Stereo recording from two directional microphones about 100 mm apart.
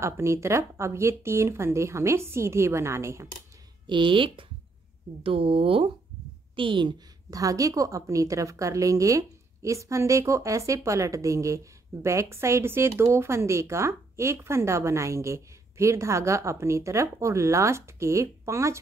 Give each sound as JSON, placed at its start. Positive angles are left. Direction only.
{"t": 0.0, "sound": "a woman's voice", "side_deg": -30}
{"t": 3.8, "sound": "a woman's voice", "side_deg": -55}
{"t": 7.2, "sound": "a woman's voice", "side_deg": -35}